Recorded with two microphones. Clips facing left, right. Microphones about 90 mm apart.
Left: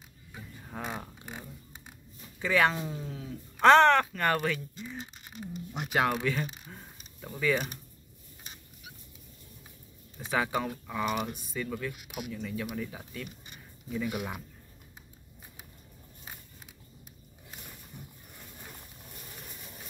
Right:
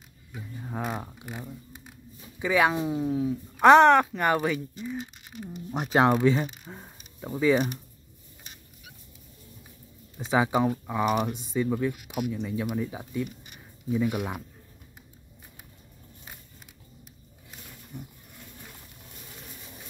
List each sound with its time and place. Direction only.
0.7 s speech: 10° right (ahead or behind)
2.3 s speech: 15° right (ahead or behind)
4.8 s speech: 5° right (ahead or behind)
5.7 s speech: 35° right (ahead or behind)
10.1 s speech: 20° right (ahead or behind)
19.4 s a sound: centre (ahead or behind)